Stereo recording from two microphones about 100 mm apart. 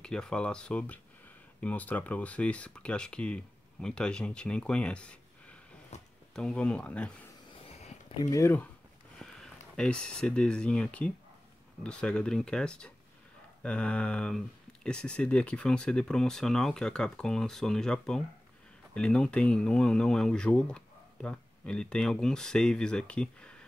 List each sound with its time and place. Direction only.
0.0 s speech: 10° left (ahead or behind)
5.9 s a sound: 90° left
6.3 s speech: 5° left (ahead or behind)
8.2 s speech: 35° left (ahead or behind)
9.2 s speech: 5° left (ahead or behind)